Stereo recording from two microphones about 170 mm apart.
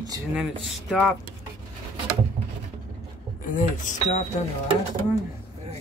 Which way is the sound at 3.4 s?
50° left (ahead or behind).